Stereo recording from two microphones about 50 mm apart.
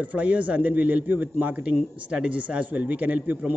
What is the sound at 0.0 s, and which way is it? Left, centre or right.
A man's voice, right.